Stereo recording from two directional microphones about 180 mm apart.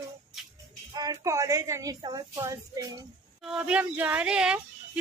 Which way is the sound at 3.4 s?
5° right (ahead or behind).